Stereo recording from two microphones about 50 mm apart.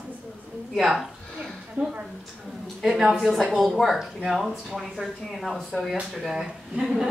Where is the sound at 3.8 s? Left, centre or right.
Centre.